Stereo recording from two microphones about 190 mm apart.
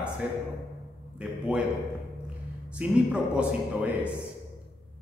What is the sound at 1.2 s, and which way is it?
Speech, 5° right (ahead or behind).